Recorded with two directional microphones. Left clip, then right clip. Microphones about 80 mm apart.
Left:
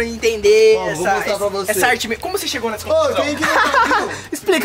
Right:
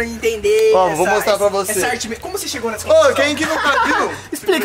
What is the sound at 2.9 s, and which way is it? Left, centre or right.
Speech, right.